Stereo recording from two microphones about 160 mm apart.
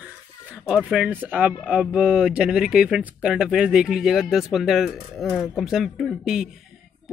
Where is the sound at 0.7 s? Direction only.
Centre (ahead or behind).